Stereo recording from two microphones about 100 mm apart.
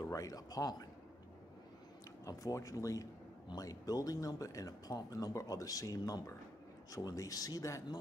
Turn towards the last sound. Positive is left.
turn(degrees=35)  # may be behind; listen again after turning